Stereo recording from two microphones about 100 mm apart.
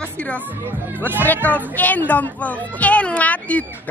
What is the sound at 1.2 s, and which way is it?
A woman's voice, 15° left (ahead or behind).